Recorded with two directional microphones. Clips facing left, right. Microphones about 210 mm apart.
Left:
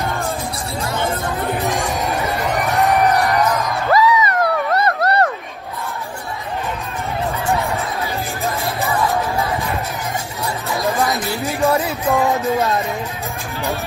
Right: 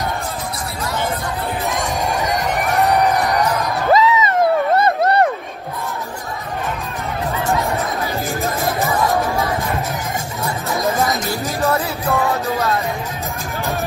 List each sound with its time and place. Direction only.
3.9 s a sound: 25° right (ahead or behind)
11.1 s music: 45° right (ahead or behind)
11.6 s music: 15° left (ahead or behind)